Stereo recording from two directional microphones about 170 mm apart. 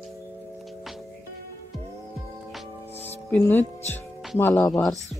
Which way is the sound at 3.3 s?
10° left (ahead or behind).